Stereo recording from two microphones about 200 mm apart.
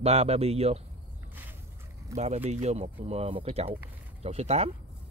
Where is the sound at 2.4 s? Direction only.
35° right (ahead or behind).